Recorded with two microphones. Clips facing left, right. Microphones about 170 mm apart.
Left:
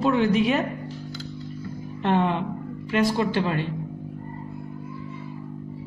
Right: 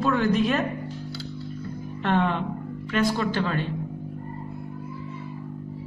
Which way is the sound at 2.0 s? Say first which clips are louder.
Left 1 dB; 15° left (ahead or behind).